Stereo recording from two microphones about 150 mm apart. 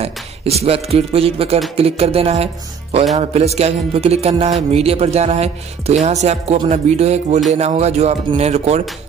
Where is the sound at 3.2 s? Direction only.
45° right (ahead or behind).